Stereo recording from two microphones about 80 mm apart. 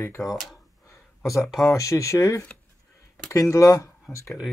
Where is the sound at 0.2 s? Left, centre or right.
Left.